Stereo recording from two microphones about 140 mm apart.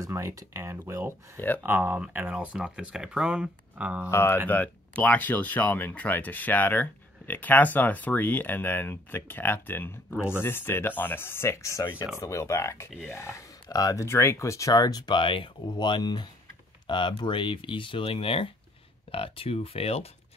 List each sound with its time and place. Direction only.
0.0 s speech: 20° right (ahead or behind)
4.1 s speech: 15° left (ahead or behind); by 20.1 s 45° left (ahead or behind)